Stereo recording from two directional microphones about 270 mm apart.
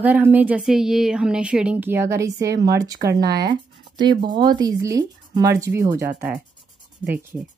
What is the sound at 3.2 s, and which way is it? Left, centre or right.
Speech, right.